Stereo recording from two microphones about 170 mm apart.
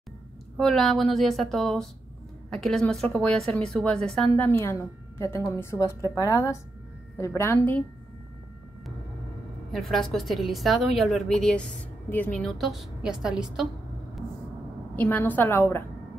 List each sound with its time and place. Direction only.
0.6 s a woman's voice: centre (ahead or behind)
9.7 s a woman's voice: centre (ahead or behind)
15.0 s a woman's voice: 10° left (ahead or behind)